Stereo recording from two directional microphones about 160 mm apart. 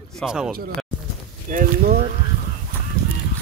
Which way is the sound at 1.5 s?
60° right (ahead or behind).